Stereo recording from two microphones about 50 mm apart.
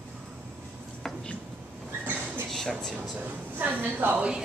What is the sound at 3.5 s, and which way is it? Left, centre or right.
Speech, right.